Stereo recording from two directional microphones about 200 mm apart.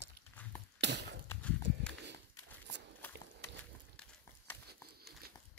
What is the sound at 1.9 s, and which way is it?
Livestock, 65° right (ahead or behind).